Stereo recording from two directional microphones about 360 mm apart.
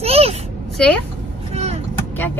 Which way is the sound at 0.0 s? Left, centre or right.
Centre.